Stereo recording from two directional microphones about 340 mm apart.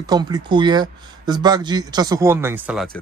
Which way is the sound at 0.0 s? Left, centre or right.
Centre.